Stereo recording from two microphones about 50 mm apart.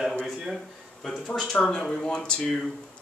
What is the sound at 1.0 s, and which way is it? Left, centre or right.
Speech, centre.